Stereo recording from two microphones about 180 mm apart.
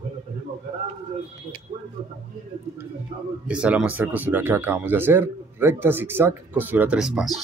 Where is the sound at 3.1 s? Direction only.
40° right (ahead or behind).